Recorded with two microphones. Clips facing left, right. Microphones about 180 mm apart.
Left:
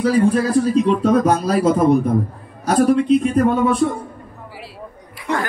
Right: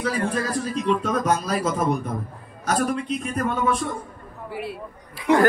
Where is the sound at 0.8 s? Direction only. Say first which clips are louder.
Left 7 dB; 35° left (ahead or behind).